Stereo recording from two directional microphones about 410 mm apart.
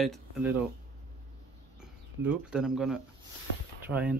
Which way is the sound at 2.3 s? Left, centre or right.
Centre.